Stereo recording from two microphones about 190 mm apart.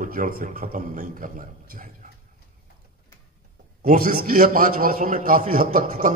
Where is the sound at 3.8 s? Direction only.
50° right (ahead or behind).